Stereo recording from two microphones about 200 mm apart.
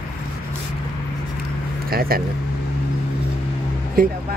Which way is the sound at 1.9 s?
50° right (ahead or behind).